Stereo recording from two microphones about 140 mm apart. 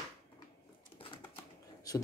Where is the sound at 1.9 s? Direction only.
25° left (ahead or behind).